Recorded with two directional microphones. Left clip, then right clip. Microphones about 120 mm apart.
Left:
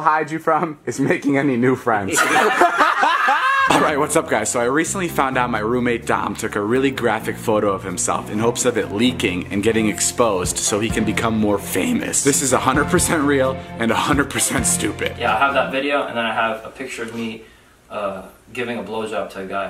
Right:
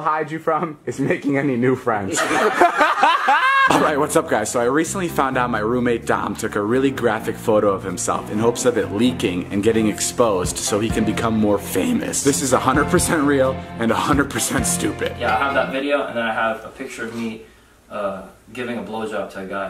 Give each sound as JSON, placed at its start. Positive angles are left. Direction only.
{"t": 0.0, "sound": "speech", "side_deg": 20}
{"t": 2.4, "sound": "speech", "side_deg": 0}